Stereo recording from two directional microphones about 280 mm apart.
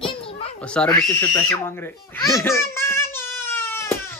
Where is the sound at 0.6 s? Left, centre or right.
Centre.